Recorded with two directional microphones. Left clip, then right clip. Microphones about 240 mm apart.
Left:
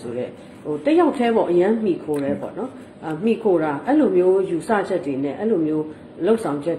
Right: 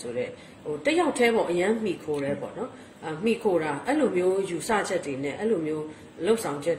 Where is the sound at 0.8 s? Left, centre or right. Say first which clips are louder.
Left 5 dB; right.